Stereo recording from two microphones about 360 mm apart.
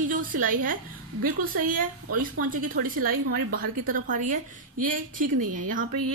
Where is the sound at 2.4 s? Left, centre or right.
Right.